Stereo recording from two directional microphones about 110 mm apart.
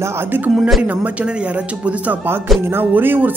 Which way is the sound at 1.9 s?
15° right (ahead or behind).